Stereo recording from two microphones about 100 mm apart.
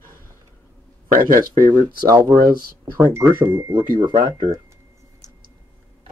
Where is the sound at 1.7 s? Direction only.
35° right (ahead or behind).